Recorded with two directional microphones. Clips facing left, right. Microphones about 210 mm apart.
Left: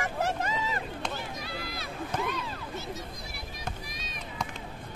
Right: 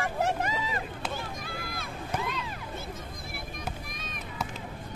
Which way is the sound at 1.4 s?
50° right (ahead or behind).